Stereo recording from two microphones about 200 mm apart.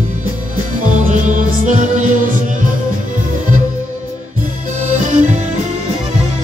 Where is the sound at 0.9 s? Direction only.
40° right (ahead or behind).